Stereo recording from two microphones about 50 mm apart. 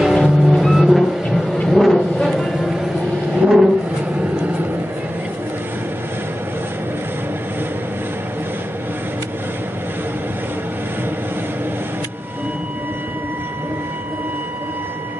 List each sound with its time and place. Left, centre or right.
0.0 s vehicle: centre
2.6 s music: centre
3.4 s vehicle: centre
4.2 s vehicle: right